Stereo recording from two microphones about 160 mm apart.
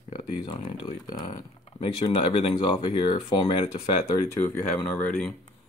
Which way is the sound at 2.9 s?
30° left (ahead or behind).